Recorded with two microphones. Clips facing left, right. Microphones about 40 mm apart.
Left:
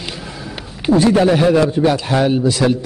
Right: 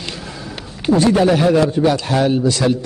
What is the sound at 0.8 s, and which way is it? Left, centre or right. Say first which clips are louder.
A man's voice: left 1 dB; centre.